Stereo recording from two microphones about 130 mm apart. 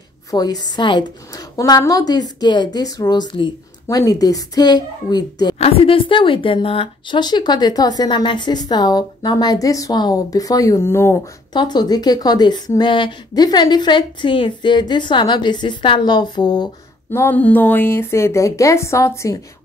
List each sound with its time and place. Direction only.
0.3 s a woman's voice: 30° left (ahead or behind)
3.8 s speech: 25° left (ahead or behind)
5.6 s a woman's voice: 50° left (ahead or behind); by 11.1 s 20° left (ahead or behind)
11.5 s a woman's voice: 35° left (ahead or behind)
17.1 s speech: 15° left (ahead or behind)